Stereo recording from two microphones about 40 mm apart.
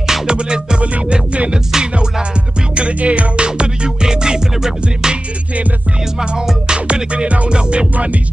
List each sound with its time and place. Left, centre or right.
0.0 s music: centre
0.4 s music: right
1.7 s music: centre
2.7 s music: right
7.9 s speech: right